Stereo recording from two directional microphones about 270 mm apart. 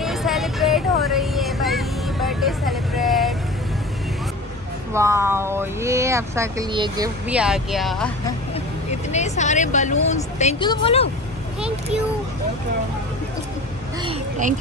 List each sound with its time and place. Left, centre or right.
0.0 s vehicle: centre
4.9 s speech: centre
7.2 s speech: centre
9.1 s speech: left